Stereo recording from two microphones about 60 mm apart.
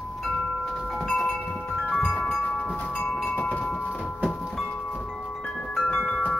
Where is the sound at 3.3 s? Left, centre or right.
Left.